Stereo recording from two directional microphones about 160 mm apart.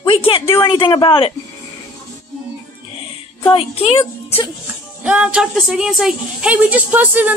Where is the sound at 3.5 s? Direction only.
35° left (ahead or behind).